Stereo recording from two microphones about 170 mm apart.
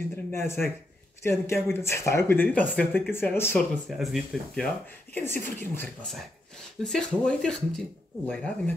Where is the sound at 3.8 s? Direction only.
Centre (ahead or behind).